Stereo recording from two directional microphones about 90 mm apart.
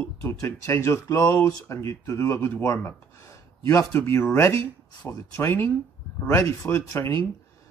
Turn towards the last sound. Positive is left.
turn(degrees=30)  # may be behind; listen again after turning